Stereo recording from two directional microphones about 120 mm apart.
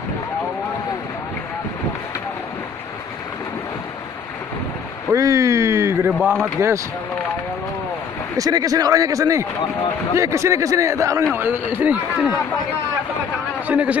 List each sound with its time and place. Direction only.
5.1 s speech: 25° right (ahead or behind)
8.4 s speech: 30° right (ahead or behind); by 12.3 s 15° right (ahead or behind)
13.7 s a man's voice: 10° right (ahead or behind)